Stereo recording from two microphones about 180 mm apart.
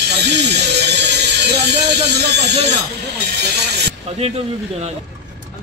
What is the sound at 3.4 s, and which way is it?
Speech, 65° right (ahead or behind).